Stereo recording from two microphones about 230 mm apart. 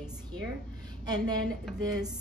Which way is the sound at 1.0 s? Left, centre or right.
Centre.